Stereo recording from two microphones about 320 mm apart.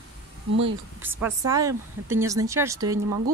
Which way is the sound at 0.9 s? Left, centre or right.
Centre.